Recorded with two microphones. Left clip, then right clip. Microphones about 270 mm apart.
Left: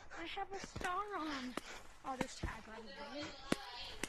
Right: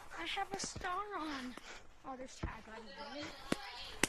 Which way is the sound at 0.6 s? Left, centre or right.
Centre.